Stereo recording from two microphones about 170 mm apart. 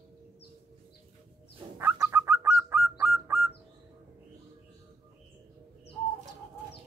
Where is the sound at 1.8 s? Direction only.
15° right (ahead or behind).